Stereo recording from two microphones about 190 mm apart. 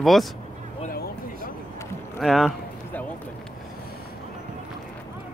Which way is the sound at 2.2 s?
Centre (ahead or behind).